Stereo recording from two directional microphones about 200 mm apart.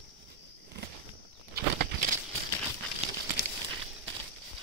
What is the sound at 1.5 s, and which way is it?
Bird flight, 50° right (ahead or behind).